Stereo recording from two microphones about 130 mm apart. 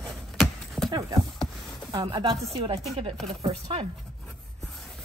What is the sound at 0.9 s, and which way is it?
Clip-clop, 25° right (ahead or behind).